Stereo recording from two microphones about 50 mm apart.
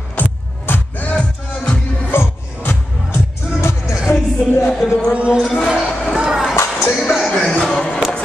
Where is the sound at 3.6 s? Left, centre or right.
Left.